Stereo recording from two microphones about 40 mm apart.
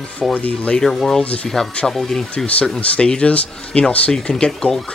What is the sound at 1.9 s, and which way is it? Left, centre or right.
Speech, centre.